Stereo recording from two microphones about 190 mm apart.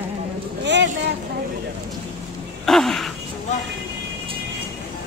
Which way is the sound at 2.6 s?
Centre (ahead or behind).